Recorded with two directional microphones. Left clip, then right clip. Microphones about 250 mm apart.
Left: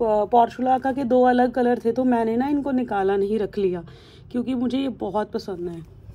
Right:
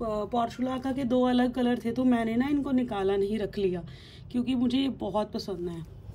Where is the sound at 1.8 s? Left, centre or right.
Right.